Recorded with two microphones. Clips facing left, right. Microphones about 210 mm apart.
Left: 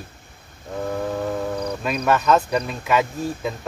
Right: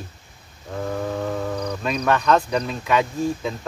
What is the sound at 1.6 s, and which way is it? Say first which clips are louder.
Speech: even; 5° left (ahead or behind).